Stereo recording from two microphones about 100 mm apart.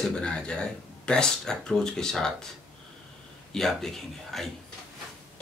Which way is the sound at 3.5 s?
5° left (ahead or behind).